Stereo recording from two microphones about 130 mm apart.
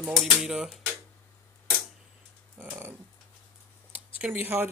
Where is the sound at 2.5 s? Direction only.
15° right (ahead or behind).